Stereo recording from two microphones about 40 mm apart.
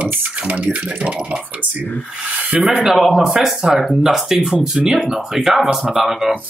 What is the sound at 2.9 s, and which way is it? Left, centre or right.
Speech, centre.